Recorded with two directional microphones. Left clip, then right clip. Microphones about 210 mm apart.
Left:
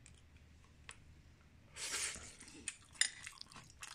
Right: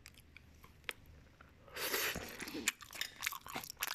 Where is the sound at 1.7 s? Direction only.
35° right (ahead or behind).